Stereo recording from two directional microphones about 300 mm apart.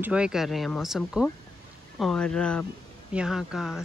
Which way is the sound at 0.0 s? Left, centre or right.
Centre.